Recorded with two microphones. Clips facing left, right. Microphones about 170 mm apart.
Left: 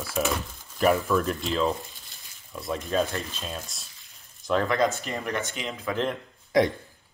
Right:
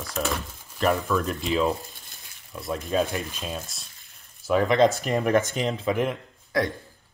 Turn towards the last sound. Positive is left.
turn(degrees=20)  # may be behind; listen again after turning